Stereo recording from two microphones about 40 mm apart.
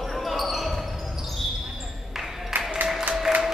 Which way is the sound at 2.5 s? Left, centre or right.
Right.